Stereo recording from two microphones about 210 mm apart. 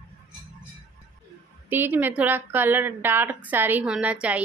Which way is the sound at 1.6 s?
10° right (ahead or behind).